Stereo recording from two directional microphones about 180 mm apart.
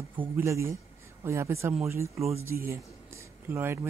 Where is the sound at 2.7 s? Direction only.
15° right (ahead or behind).